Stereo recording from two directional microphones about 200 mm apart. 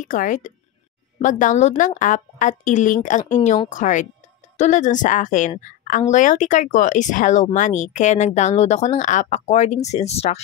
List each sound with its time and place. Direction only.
0.0 s a woman's voice: 40° left (ahead or behind)